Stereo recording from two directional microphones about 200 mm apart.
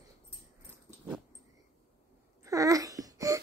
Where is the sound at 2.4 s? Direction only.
15° right (ahead or behind).